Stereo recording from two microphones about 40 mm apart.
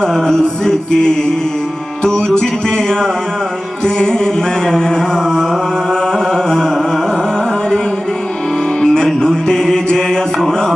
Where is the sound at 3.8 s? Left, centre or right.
Centre.